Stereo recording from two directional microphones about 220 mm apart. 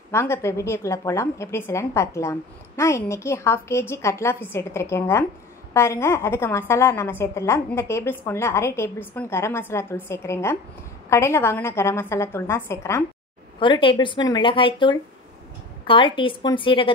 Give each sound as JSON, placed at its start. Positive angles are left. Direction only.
{"t": 0.1, "sound": "a woman's voice", "side_deg": 10}
{"t": 13.6, "sound": "speech", "side_deg": 20}